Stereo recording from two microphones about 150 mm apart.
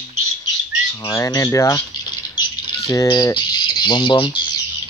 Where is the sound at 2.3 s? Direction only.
25° left (ahead or behind).